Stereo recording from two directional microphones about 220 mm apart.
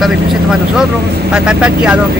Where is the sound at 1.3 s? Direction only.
5° right (ahead or behind).